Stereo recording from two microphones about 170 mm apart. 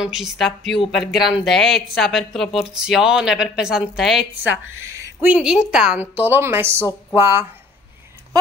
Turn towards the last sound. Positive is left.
turn(degrees=-15)  # may be behind; listen again after turning